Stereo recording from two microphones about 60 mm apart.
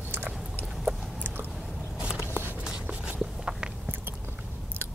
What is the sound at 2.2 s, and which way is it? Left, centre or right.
Walk, left.